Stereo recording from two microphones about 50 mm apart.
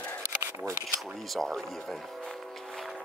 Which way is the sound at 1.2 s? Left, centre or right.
Centre.